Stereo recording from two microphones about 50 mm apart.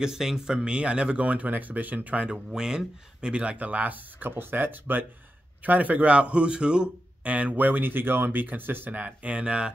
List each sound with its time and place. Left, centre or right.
0.0 s speech: centre; by 2.2 s right
2.2 s speech: centre; by 8.9 s right
8.9 s speech: right